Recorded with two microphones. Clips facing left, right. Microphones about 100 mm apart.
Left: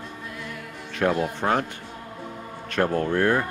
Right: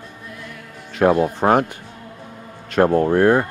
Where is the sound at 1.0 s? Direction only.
45° right (ahead or behind).